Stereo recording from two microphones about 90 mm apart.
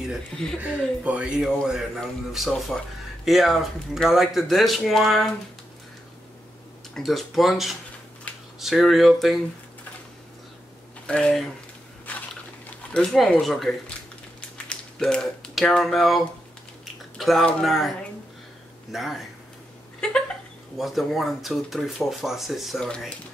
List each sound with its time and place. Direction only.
0.6 s speech: 15° right (ahead or behind); by 5.3 s centre (ahead or behind)
6.9 s speech: centre (ahead or behind)
11.1 s speech: 10° left (ahead or behind)
12.1 s a sound: 15° left (ahead or behind)
12.9 s speech: 5° left (ahead or behind)
16.8 s typing: centre (ahead or behind)
17.6 s speech: centre (ahead or behind)
20.0 s a sound: 10° left (ahead or behind)
20.7 s speech: centre (ahead or behind)
22.8 s speech: 10° left (ahead or behind)